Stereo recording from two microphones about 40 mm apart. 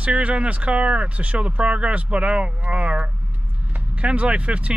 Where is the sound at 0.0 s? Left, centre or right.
Right.